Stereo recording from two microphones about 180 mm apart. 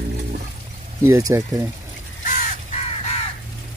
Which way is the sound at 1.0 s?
15° right (ahead or behind).